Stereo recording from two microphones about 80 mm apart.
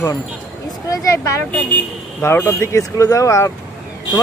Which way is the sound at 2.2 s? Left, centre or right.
Left.